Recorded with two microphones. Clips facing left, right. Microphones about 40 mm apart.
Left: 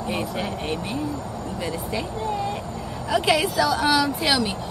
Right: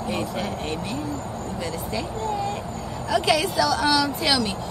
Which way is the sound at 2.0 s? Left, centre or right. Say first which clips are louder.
Right 1 dB; centre.